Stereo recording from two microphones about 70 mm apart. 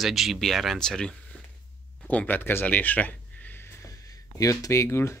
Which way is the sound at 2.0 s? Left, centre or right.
Left.